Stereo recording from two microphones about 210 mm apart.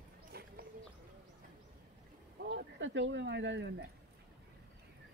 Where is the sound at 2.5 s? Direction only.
60° right (ahead or behind).